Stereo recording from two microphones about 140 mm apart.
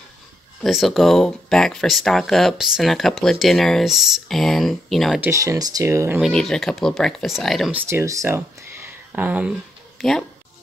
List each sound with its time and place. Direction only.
0.7 s speech: centre (ahead or behind)
5.2 s speech: 20° right (ahead or behind)
6.2 s speech: 5° left (ahead or behind)
7.7 s speech: 15° right (ahead or behind)
9.9 s speech: centre (ahead or behind)